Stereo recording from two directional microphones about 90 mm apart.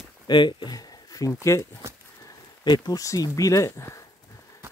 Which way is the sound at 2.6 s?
50° left (ahead or behind).